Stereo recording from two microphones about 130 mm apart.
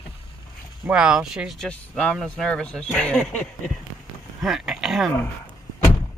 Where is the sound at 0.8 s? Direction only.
5° right (ahead or behind); by 3.5 s 10° left (ahead or behind).